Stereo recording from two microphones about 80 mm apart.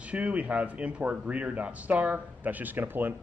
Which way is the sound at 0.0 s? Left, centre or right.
Centre.